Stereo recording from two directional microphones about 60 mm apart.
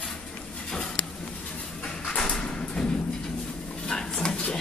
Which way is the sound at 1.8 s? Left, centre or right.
Centre.